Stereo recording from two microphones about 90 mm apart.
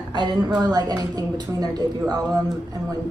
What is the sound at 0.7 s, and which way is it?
A woman's voice, 45° right (ahead or behind).